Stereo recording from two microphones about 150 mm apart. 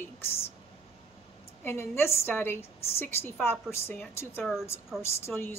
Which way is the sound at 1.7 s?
15° left (ahead or behind).